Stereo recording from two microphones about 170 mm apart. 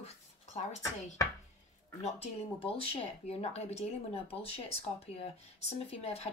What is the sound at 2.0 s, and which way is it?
Speech, 35° left (ahead or behind).